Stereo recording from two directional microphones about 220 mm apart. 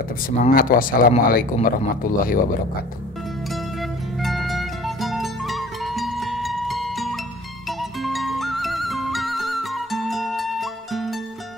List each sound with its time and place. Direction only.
0.4 s speech: 40° left (ahead or behind)
4.2 s music: centre (ahead or behind)